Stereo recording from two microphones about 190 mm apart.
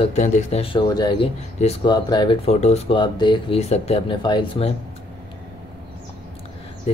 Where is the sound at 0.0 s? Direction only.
35° left (ahead or behind).